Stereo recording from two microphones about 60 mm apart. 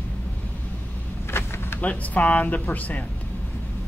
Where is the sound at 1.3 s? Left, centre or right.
Left.